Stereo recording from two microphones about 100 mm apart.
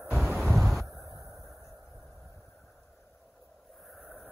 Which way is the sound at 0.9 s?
30° right (ahead or behind).